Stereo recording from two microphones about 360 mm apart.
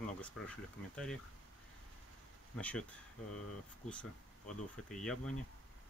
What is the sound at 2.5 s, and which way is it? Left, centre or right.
Speech, centre.